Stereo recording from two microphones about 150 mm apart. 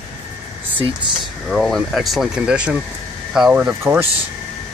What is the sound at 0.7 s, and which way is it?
Speech, 35° right (ahead or behind).